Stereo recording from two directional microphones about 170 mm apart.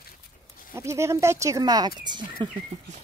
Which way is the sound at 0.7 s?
15° right (ahead or behind).